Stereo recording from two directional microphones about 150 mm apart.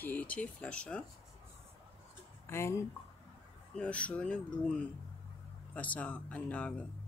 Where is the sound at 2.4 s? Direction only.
15° left (ahead or behind).